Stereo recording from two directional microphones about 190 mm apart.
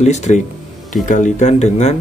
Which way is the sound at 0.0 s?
35° left (ahead or behind).